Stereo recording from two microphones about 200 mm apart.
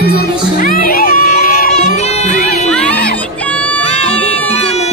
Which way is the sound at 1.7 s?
35° left (ahead or behind).